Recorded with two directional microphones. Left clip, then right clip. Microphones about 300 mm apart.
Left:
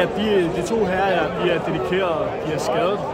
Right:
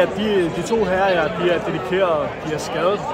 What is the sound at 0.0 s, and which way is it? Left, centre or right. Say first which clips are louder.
A man's voice: right 1 dB; centre.